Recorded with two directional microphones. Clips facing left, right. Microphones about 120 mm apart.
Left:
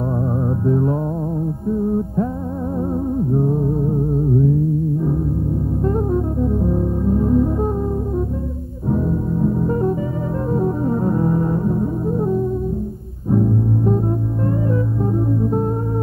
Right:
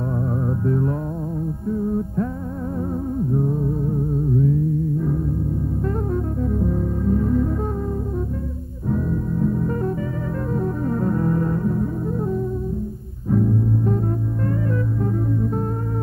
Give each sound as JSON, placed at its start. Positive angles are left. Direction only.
{"t": 0.7, "sound": "music", "side_deg": 25}
{"t": 3.3, "sound": "music", "side_deg": 25}
{"t": 5.9, "sound": "brass instrument", "side_deg": 20}
{"t": 8.8, "sound": "music", "side_deg": 25}